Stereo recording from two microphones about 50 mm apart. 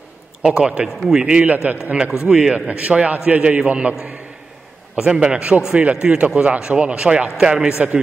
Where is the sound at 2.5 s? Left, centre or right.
Right.